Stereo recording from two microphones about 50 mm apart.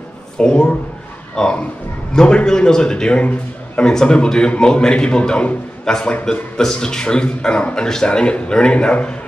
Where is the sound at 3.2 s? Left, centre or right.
Left.